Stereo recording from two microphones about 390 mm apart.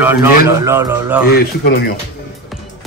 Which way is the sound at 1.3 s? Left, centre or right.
Left.